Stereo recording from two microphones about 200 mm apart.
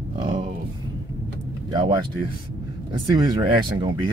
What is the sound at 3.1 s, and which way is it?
Speech, 25° right (ahead or behind).